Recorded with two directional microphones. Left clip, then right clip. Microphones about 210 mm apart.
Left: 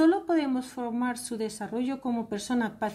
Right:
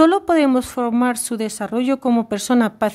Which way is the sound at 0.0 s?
40° right (ahead or behind).